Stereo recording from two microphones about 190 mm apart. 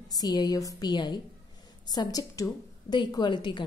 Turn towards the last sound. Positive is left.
turn(degrees=25)  # may be behind; listen again after turning